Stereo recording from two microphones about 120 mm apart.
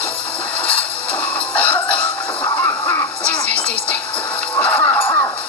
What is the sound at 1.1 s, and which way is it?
Music, 10° left (ahead or behind).